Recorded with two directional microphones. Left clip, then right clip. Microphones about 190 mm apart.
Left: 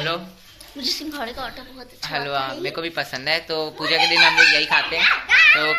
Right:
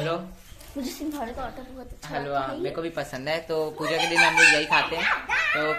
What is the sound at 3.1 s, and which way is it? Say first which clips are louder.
Speech: left 4 dB; 10° right (ahead or behind).